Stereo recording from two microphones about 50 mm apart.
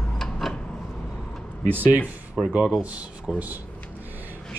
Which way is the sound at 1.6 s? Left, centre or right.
Right.